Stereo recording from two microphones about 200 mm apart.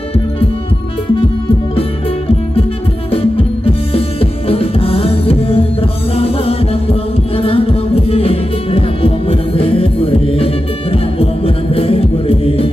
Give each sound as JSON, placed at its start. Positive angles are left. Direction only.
{"t": 1.8, "sound": "music", "side_deg": 30}